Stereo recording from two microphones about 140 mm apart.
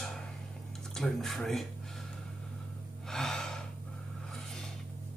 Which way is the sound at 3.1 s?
5° left (ahead or behind).